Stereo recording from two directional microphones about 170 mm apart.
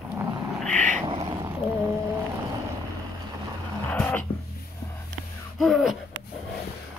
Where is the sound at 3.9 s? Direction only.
10° left (ahead or behind).